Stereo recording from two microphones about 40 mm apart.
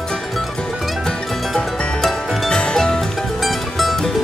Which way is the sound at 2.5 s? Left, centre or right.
Centre.